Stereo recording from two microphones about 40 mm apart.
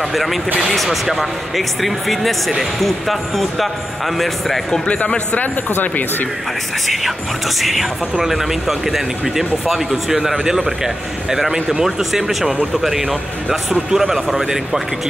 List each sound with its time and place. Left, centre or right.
0.1 s speech: centre
4.8 s speech: left
5.4 s speech: left
7.6 s speech: centre